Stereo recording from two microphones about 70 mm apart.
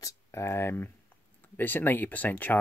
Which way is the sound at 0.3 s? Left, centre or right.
Left.